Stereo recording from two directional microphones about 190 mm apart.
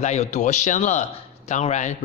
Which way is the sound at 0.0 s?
35° left (ahead or behind).